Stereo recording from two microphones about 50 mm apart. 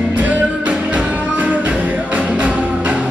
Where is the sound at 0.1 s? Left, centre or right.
Right.